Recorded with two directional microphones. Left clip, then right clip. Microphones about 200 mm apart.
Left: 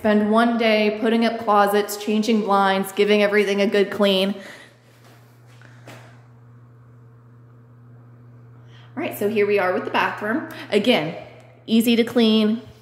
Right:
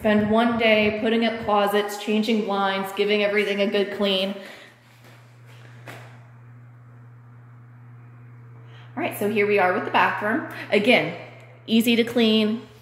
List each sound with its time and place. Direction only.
0.0 s speech: 30° left (ahead or behind); by 4.3 s 45° left (ahead or behind)
8.9 s a woman's voice: 10° left (ahead or behind)